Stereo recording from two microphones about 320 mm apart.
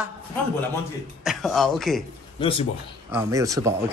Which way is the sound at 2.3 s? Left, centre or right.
Centre.